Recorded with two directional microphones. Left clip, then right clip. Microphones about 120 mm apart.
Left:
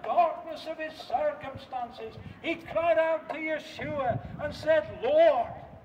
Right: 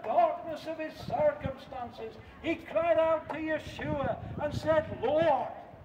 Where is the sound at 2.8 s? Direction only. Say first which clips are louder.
Left 2 dB; 55° left (ahead or behind).